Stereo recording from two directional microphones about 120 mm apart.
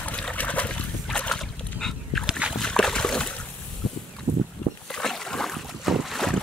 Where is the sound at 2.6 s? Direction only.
5° left (ahead or behind).